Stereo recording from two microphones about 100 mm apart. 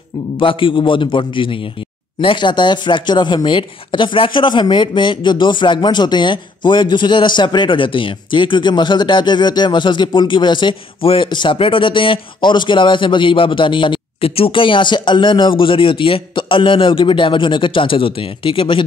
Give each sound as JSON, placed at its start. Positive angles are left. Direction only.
{"t": 0.4, "sound": "speech", "side_deg": 60}
{"t": 11.2, "sound": "speech", "side_deg": 50}
{"t": 11.5, "sound": "speech", "side_deg": 60}